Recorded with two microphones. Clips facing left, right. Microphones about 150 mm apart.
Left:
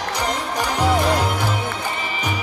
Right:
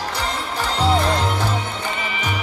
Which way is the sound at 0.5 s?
15° left (ahead or behind).